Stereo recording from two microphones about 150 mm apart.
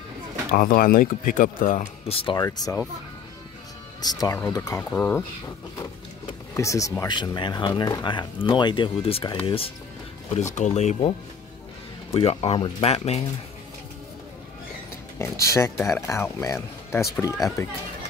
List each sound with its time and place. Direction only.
0.5 s speech: 70° left (ahead or behind)
2.0 s speech: 40° left (ahead or behind)
2.3 s speech: 25° left (ahead or behind)
4.0 s speech: 25° left (ahead or behind)
6.5 s speech: 20° left (ahead or behind); by 9.4 s 35° left (ahead or behind)
10.5 s speech: 50° left (ahead or behind)
15.1 s speech: 20° left (ahead or behind)